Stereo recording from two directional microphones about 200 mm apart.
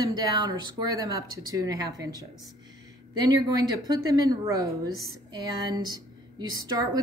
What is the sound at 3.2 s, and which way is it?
A woman's voice, 20° right (ahead or behind).